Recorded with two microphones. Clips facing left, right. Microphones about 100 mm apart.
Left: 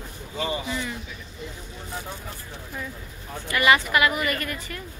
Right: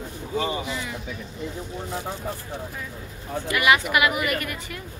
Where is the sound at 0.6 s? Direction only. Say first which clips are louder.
Left 1 dB; 10° right (ahead or behind).